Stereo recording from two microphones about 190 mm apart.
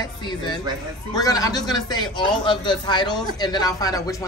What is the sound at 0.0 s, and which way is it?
Speech, 25° left (ahead or behind).